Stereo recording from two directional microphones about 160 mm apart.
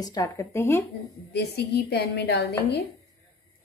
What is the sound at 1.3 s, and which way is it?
A woman's voice, 90° left.